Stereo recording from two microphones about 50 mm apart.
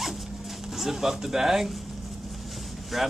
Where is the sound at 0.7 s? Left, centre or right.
Centre.